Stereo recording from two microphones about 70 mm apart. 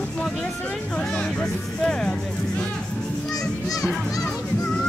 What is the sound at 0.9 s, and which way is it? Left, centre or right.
Music, centre.